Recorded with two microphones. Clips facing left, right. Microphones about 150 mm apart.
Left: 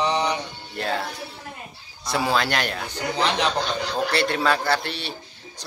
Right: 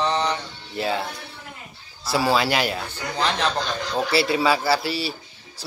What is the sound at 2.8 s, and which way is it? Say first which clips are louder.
Speech: left 1 dB; 15° left (ahead or behind).